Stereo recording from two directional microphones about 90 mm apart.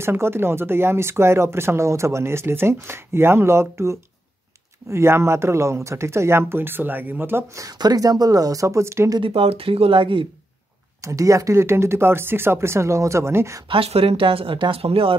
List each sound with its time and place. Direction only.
0.0 s speech: 25° right (ahead or behind)
7.5 s speech: 45° right (ahead or behind)
9.2 s speech: 90° right; by 10.2 s 70° right (ahead or behind)
11.0 s speech: 35° right (ahead or behind)
13.7 s speech: 90° right